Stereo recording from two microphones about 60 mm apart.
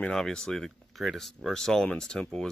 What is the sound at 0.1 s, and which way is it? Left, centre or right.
Speech, centre.